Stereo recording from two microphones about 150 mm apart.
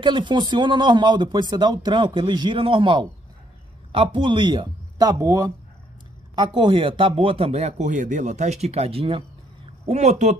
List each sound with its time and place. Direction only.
0.0 s a man's voice: 30° right (ahead or behind)
9.8 s speech: 50° right (ahead or behind)